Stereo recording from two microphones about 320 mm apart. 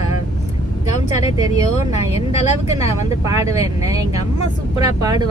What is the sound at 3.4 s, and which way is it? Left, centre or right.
Speech, centre.